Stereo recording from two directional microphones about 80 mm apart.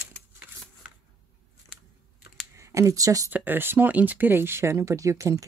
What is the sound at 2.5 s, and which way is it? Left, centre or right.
Speech, right.